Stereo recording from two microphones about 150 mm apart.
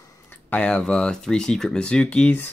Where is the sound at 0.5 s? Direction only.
10° left (ahead or behind).